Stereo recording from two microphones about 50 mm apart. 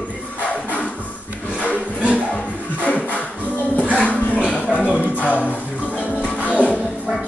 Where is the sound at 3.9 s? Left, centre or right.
Left.